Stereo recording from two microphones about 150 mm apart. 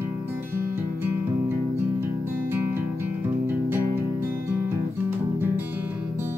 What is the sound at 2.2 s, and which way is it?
Music, 15° right (ahead or behind).